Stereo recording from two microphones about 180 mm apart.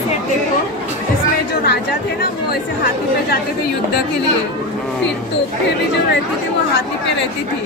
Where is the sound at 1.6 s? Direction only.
65° left (ahead or behind).